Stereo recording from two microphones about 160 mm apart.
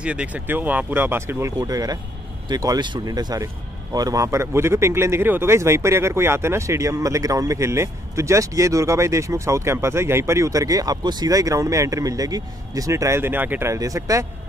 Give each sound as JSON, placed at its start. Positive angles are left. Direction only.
{"t": 0.0, "sound": "speech", "side_deg": -5}